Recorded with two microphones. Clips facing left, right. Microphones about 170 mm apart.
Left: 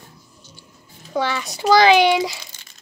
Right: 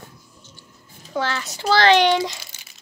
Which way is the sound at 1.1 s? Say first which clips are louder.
Left 2 dB; 15° left (ahead or behind).